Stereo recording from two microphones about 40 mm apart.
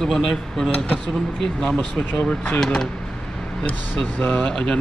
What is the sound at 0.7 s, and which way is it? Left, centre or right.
Speech, left.